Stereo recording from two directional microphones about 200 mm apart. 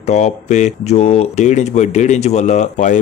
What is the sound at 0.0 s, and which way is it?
Speech, 35° left (ahead or behind).